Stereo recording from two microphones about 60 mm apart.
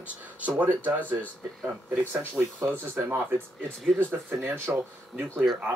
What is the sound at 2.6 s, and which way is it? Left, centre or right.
Speech, right.